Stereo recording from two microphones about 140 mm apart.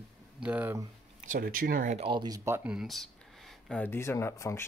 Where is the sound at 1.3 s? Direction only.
90° right.